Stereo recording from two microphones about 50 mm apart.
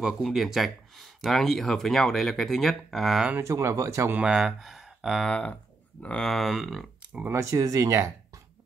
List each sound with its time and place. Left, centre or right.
0.2 s speech: centre
3.4 s speech: right
4.2 s speech: centre
4.6 s a sound: centre
5.2 s speech: left
6.1 s speech: centre
7.3 s speech: right